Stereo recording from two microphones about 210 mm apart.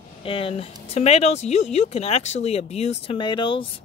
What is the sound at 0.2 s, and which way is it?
Speech, 25° left (ahead or behind).